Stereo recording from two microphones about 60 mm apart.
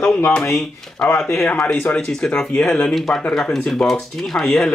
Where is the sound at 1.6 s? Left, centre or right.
Left.